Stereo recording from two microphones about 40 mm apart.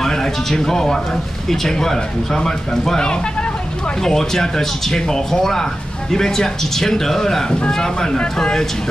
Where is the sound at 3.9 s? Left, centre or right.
Centre.